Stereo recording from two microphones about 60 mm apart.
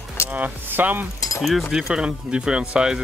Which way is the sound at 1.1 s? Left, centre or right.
Left.